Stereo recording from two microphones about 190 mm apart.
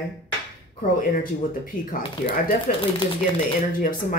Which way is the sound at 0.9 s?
45° left (ahead or behind).